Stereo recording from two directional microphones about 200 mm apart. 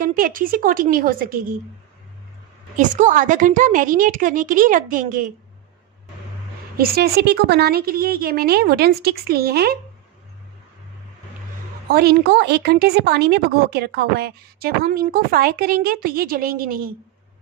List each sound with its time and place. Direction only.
0.0 s a woman's voice: 45° right (ahead or behind)
2.7 s a woman's voice: 40° right (ahead or behind)
6.8 s a woman's voice: 50° right (ahead or behind)
11.9 s a woman's voice: 55° right (ahead or behind)